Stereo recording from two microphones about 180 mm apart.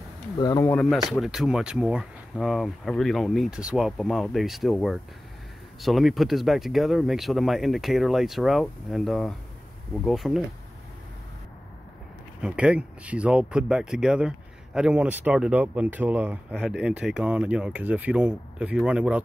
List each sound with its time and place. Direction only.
0.4 s speech: 20° left (ahead or behind)
0.7 s speech: 5° left (ahead or behind)
12.4 s speech: 5° right (ahead or behind)